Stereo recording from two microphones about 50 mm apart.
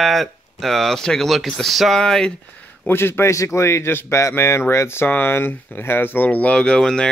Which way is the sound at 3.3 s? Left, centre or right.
Left.